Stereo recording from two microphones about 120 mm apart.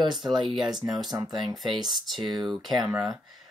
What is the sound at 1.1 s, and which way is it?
Speech, 35° right (ahead or behind).